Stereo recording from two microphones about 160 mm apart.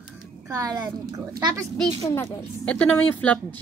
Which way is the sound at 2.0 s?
20° left (ahead or behind).